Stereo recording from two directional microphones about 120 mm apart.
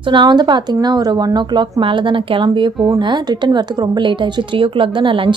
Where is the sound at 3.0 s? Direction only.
40° right (ahead or behind).